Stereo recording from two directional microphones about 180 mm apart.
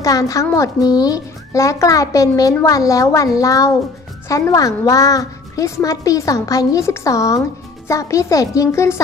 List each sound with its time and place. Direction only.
0.0 s a woman's voice: 20° left (ahead or behind)